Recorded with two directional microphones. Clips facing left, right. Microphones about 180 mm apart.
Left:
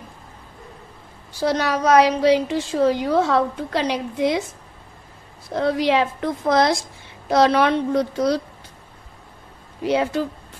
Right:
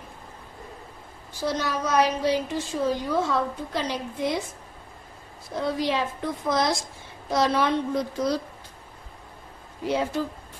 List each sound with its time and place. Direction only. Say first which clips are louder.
1.4 s a woman's voice: left 7 dB; 75° left (ahead or behind)
5.5 s a woman's voice: left 7 dB; 75° left (ahead or behind)
9.8 s a woman's voice: left 5 dB; 75° left (ahead or behind)